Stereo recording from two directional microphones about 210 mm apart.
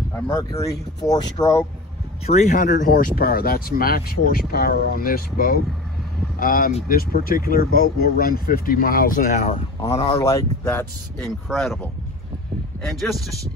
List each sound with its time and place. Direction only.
0.1 s speech: 15° left (ahead or behind)
2.2 s speech: 35° left (ahead or behind)
10.2 s speech: 15° left (ahead or behind)